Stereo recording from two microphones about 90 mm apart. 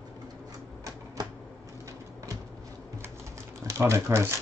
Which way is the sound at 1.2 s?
45° right (ahead or behind).